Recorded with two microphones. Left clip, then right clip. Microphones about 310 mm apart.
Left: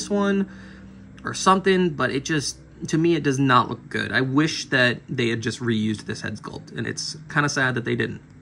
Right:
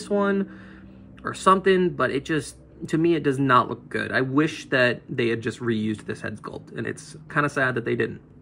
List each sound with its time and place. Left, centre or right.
0.0 s speech: centre